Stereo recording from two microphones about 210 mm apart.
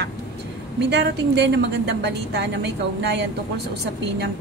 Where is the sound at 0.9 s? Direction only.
55° right (ahead or behind).